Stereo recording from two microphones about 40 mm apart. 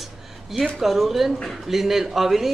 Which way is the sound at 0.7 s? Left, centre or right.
Centre.